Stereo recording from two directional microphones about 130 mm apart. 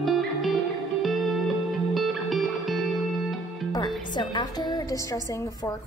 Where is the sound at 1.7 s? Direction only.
Centre (ahead or behind).